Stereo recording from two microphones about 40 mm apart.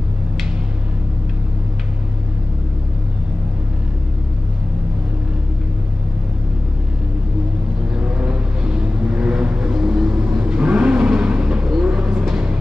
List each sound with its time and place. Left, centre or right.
8.0 s vehicle: right